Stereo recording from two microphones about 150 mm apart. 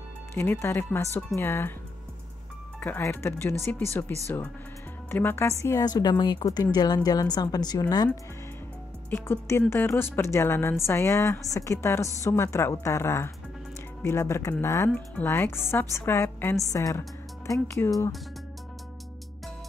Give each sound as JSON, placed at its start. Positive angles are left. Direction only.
{"t": 0.3, "sound": "a woman's voice", "side_deg": 15}
{"t": 2.8, "sound": "a woman's voice", "side_deg": 15}
{"t": 9.1, "sound": "a woman's voice", "side_deg": 15}